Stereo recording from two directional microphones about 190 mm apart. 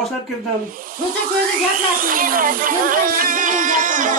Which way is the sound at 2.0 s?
45° right (ahead or behind).